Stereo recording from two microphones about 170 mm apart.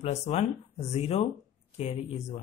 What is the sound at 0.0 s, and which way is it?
A man's voice, 40° left (ahead or behind).